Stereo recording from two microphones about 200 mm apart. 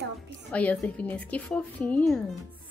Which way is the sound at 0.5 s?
5° left (ahead or behind).